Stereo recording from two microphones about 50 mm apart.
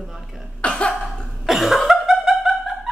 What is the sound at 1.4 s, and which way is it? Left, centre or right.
Cough, centre.